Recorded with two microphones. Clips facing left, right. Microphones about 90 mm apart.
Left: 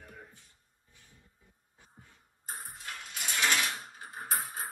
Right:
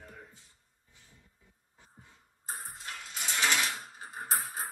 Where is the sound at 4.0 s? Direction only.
15° right (ahead or behind).